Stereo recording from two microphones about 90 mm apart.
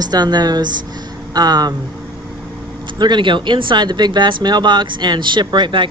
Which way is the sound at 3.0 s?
60° right (ahead or behind).